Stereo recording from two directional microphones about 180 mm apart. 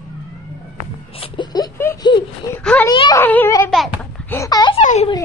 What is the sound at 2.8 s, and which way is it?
Laughter, 20° left (ahead or behind).